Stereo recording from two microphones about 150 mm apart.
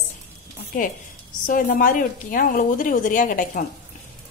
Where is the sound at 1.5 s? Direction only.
65° left (ahead or behind).